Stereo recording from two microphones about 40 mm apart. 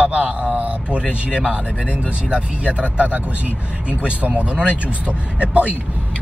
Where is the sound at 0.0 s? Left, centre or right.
Right.